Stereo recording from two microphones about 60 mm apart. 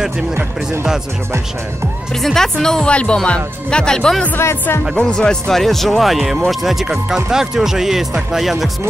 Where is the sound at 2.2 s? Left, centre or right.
Centre.